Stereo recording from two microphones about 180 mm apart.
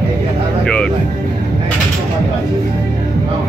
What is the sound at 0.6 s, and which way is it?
Speech, 5° left (ahead or behind).